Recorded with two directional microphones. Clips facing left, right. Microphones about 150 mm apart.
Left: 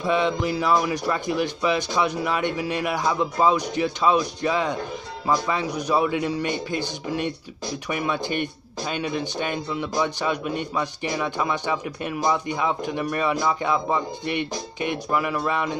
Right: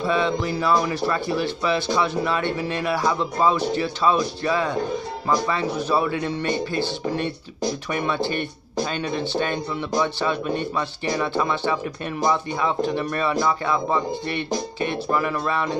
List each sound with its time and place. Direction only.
0.0 s speech: 15° left (ahead or behind)